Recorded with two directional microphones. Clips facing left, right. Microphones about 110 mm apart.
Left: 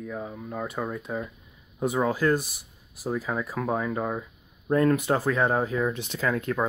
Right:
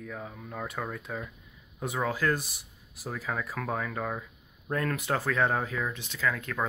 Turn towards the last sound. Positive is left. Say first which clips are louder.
# left 4 dB
turn(degrees=30)  # may be behind; listen again after turning